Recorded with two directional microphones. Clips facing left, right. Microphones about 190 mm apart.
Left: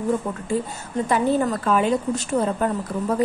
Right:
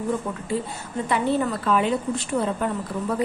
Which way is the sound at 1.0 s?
45° left (ahead or behind).